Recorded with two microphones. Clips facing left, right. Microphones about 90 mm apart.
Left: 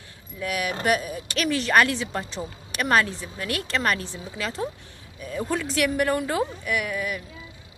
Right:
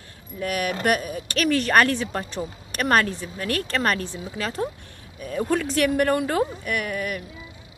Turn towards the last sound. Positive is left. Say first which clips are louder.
# even
turn(degrees=-50)  # may be behind; listen again after turning